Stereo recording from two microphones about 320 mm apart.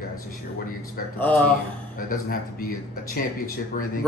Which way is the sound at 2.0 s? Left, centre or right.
Left.